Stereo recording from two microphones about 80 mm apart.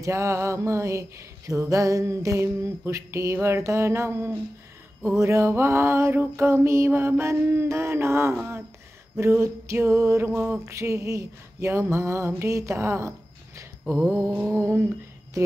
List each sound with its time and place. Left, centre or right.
0.0 s mantra: right
10.6 s mantra: right
14.6 s mantra: right